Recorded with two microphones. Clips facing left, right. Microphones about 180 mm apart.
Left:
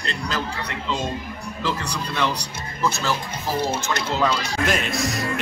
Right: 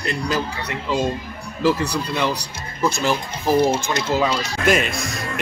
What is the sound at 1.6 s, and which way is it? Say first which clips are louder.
Speech: right 8 dB; 10° right (ahead or behind).